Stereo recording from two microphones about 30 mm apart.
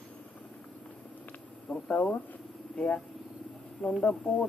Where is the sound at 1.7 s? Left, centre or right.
Left.